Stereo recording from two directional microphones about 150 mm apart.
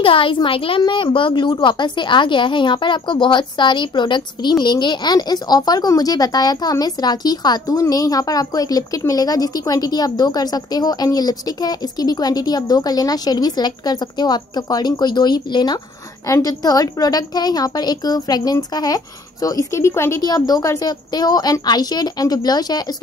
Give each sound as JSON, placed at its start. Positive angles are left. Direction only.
{"t": 0.0, "sound": "a woman's voice", "side_deg": 35}